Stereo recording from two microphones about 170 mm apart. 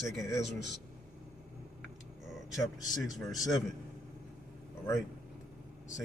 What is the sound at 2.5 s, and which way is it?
A man's voice, centre (ahead or behind).